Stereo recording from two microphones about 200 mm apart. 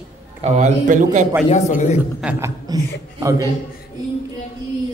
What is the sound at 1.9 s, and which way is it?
Speech, 10° right (ahead or behind).